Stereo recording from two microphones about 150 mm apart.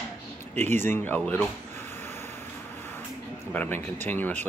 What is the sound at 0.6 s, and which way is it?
Speech, 15° left (ahead or behind).